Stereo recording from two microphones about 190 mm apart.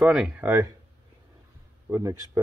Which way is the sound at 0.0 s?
5° right (ahead or behind).